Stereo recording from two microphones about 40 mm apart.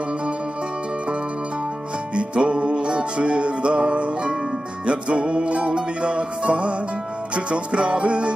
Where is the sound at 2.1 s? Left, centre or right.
Right.